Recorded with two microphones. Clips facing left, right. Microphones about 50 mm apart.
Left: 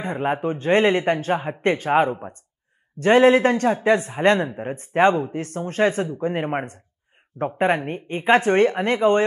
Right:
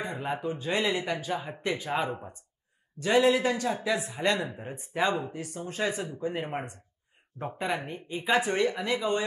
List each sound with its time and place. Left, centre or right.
0.0 s speech: left